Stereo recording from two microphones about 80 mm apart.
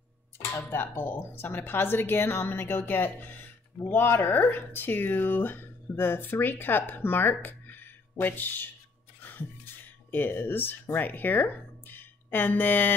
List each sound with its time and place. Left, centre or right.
0.5 s speech: left
10.1 s speech: left